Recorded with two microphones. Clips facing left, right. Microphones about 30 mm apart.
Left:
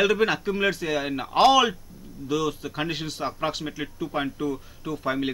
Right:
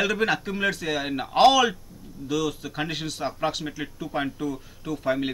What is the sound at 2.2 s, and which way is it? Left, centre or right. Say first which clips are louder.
A man's voice: left 1 dB; centre.